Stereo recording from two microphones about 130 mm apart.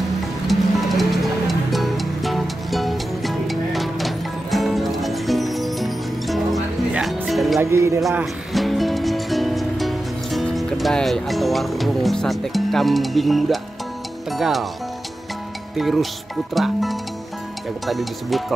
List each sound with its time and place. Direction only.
0.5 s music: centre (ahead or behind)
7.6 s speech: 20° right (ahead or behind)
8.5 s music: centre (ahead or behind)
14.3 s speech: centre (ahead or behind)
15.7 s speech: centre (ahead or behind)